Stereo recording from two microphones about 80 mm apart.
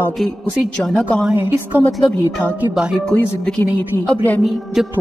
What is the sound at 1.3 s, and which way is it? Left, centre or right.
Speech, right.